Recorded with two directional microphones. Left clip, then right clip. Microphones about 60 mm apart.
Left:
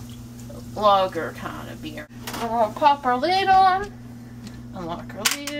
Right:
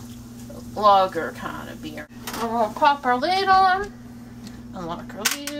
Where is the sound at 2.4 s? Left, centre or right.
Centre.